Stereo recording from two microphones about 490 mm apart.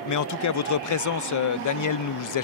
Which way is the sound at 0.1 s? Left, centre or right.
Left.